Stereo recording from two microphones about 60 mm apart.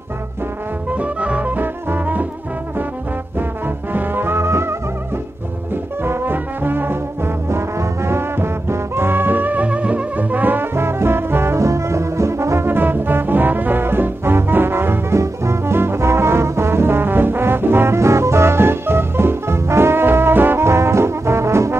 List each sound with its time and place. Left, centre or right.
0.9 s music: right
3.3 s music: right
6.0 s trombone: right
11.6 s brass instrument: right
15.1 s brass instrument: right
20.6 s trombone: right